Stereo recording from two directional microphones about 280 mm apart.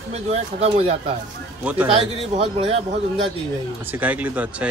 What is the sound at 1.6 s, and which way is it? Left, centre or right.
Speech, centre.